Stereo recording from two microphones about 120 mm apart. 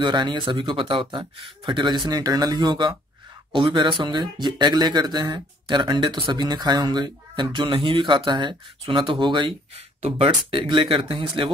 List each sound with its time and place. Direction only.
0.0 s speech: 40° right (ahead or behind)